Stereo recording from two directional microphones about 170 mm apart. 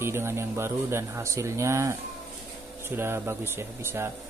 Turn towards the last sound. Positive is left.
turn(degrees=-15)  # may be behind; listen again after turning